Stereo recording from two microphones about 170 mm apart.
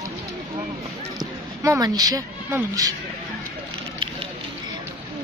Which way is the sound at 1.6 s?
20° right (ahead or behind).